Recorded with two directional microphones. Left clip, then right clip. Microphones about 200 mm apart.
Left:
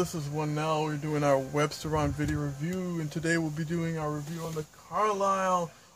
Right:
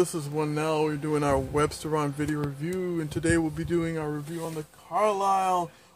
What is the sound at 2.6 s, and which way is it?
Speech, 25° right (ahead or behind).